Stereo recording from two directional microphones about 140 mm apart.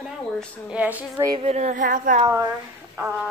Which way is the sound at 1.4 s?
50° right (ahead or behind).